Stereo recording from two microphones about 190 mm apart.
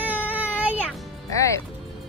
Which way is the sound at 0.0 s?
10° right (ahead or behind).